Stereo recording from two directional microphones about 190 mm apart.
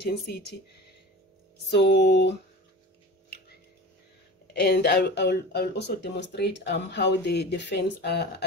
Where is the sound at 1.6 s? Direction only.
60° left (ahead or behind).